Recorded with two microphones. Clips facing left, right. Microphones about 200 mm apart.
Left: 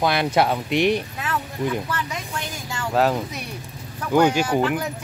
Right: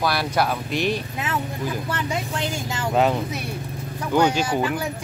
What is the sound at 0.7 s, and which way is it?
Speech, 65° left (ahead or behind).